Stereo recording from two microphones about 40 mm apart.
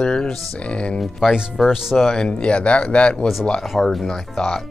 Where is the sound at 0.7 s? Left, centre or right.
Left.